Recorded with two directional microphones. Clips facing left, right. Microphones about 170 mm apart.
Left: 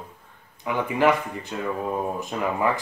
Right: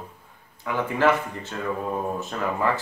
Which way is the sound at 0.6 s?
15° left (ahead or behind).